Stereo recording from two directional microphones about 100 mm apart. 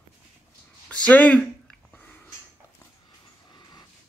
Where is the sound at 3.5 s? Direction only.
45° left (ahead or behind).